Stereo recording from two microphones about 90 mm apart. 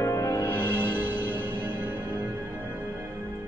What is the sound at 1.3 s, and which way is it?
Music, 20° right (ahead or behind).